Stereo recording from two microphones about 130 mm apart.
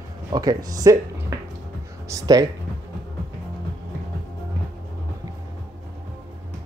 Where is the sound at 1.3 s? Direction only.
25° right (ahead or behind).